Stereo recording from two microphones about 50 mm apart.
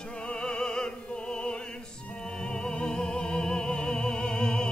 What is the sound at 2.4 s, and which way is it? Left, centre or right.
Music, centre.